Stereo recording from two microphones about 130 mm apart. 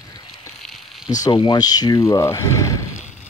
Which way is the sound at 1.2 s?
40° left (ahead or behind).